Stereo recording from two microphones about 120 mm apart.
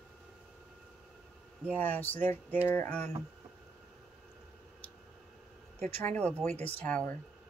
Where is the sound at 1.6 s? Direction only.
15° left (ahead or behind).